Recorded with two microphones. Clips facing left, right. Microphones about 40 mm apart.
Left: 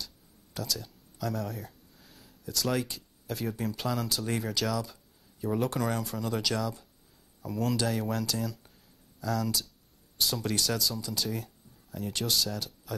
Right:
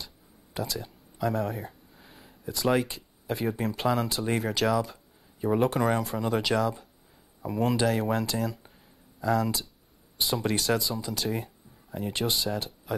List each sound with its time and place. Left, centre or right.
0.6 s speech: right